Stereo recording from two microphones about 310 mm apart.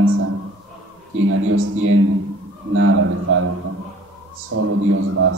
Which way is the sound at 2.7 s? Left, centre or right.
Right.